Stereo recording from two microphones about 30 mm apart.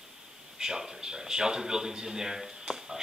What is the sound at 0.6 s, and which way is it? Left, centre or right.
A man's voice, right.